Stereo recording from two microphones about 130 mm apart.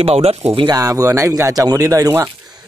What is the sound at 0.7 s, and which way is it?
Speech, 30° right (ahead or behind).